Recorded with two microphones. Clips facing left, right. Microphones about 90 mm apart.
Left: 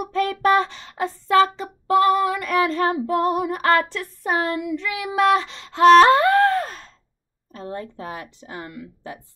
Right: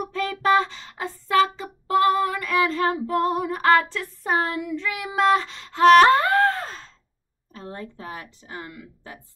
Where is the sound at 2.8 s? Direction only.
10° left (ahead or behind).